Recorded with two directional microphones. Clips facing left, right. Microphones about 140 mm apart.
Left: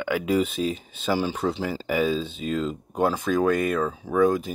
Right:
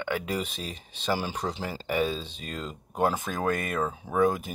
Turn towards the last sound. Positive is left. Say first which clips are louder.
# left 4 dB
turn(degrees=-15)  # may be behind; listen again after turning